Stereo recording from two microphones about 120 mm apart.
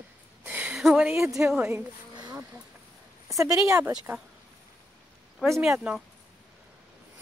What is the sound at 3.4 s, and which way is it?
Speech, 25° right (ahead or behind).